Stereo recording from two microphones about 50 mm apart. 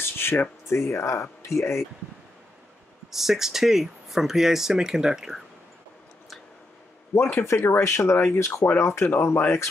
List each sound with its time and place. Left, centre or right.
0.0 s a sound: left
0.7 s speech: left
3.1 s speech: centre
7.2 s speech: left